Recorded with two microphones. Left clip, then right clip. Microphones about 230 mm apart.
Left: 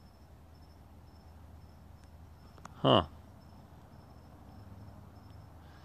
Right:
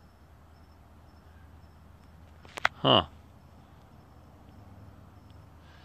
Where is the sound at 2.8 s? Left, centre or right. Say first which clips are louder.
Right 3 dB; centre.